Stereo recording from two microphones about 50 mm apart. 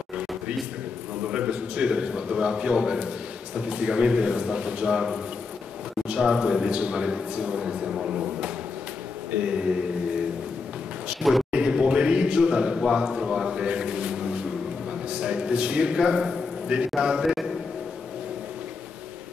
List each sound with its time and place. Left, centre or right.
1.3 s a man's voice: right
11.5 s a sound: centre
12.7 s a man's voice: centre
13.7 s a sound: right
15.0 s a man's voice: right
17.2 s a man's voice: centre